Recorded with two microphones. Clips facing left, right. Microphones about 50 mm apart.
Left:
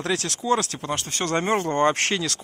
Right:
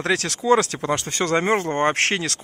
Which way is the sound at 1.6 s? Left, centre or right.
Right.